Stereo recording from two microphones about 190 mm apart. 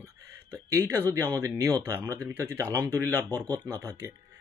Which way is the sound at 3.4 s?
20° right (ahead or behind).